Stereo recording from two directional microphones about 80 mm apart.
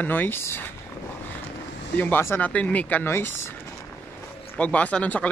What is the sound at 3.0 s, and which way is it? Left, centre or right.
Speech, left.